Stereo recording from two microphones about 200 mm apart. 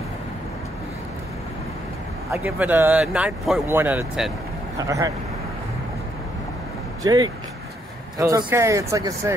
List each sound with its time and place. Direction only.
2.3 s speech: 10° right (ahead or behind)
7.0 s speech: 20° right (ahead or behind)